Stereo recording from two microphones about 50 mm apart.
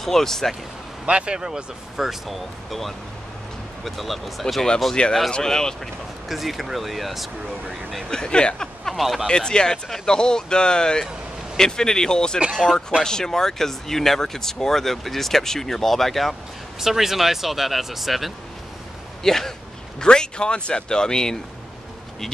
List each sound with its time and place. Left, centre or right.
0.0 s speech: centre
1.0 s speech: right
2.0 s speech: centre
6.2 s speech: centre
8.1 s speech: centre
8.8 s speech: centre
9.3 s speech: centre
16.8 s speech: centre
19.2 s speech: centre